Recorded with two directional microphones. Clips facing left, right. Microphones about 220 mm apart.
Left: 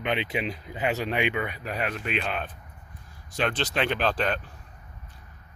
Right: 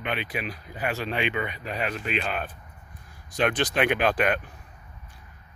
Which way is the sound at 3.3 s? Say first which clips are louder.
Right 3 dB; 15° right (ahead or behind).